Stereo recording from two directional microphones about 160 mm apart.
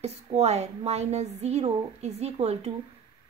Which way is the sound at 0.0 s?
40° right (ahead or behind).